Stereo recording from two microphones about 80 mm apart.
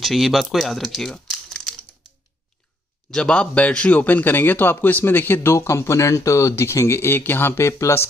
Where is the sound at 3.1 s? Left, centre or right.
Centre.